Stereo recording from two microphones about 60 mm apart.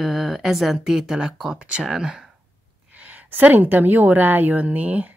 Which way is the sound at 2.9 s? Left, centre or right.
Right.